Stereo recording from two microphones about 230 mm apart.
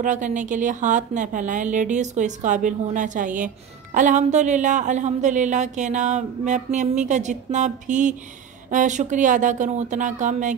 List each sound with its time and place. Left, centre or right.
0.0 s a woman's voice: right